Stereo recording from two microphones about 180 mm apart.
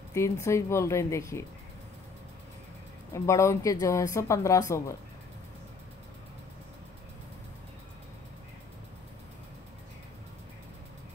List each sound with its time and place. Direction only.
0.1 s speech: 15° left (ahead or behind)
3.1 s speech: 15° left (ahead or behind)